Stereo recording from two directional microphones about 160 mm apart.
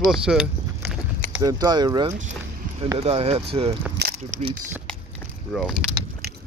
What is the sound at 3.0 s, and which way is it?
Speech, 40° right (ahead or behind).